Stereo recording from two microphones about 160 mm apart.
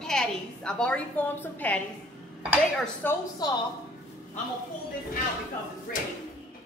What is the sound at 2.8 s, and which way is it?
Speech, 10° left (ahead or behind).